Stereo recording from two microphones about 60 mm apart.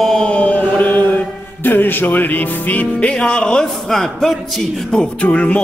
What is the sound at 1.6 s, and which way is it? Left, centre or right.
Music, left.